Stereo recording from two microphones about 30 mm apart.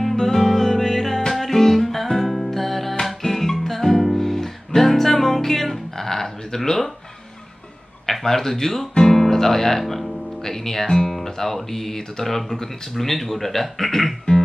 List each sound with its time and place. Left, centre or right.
0.0 s music: centre
6.0 s a sound: centre
8.1 s speech: centre